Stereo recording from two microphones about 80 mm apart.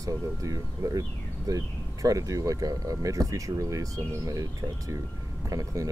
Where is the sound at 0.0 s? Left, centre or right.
Right.